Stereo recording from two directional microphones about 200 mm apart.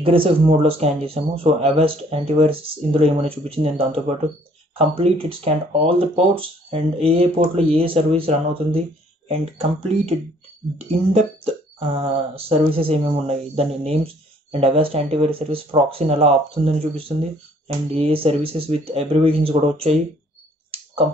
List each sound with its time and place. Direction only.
0.0 s speech: 25° right (ahead or behind)
12.0 s speech: 30° right (ahead or behind)